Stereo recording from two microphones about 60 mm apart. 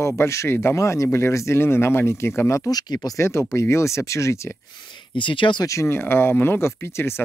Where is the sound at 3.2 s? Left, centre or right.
Left.